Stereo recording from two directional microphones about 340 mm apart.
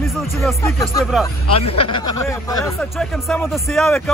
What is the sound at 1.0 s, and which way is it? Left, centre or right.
Speech, centre.